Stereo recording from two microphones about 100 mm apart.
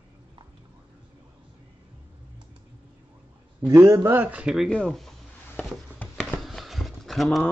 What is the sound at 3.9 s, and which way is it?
Speech, 30° right (ahead or behind).